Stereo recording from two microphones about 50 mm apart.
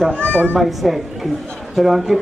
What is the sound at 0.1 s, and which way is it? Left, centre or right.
Speech, left.